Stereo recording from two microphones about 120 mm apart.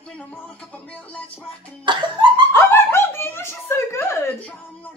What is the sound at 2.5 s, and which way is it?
Speech, 20° left (ahead or behind).